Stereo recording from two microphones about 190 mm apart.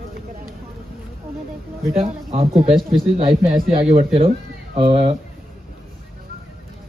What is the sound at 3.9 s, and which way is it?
Speech, 30° right (ahead or behind).